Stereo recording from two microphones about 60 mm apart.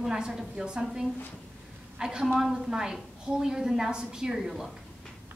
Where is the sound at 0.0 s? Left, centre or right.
Centre.